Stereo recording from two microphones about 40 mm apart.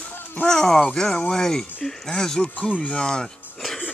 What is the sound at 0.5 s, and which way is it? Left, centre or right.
Speech, centre.